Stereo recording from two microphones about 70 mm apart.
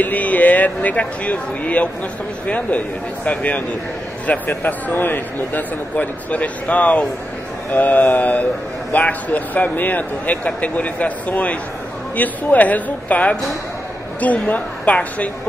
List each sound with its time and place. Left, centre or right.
0.0 s a man's voice: left